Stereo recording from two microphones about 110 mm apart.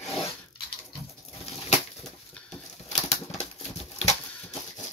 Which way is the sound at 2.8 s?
90° left.